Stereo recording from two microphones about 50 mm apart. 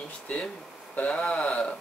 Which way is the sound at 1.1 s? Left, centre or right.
Centre.